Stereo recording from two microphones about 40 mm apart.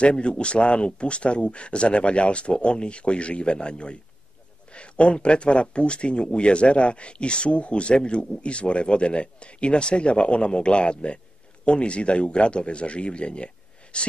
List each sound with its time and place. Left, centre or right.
0.0 s speech: left